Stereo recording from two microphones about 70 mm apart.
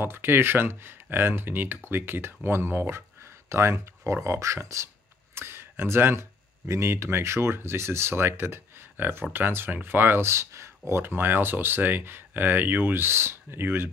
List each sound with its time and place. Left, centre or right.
0.0 s speech: right
5.3 s speech: right